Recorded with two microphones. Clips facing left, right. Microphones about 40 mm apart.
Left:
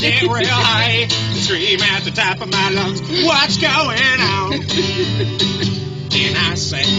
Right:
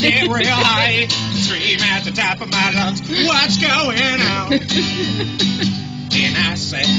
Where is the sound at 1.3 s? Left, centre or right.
Left.